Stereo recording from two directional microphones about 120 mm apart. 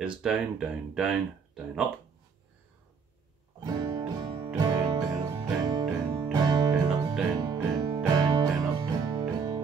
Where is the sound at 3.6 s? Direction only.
35° right (ahead or behind).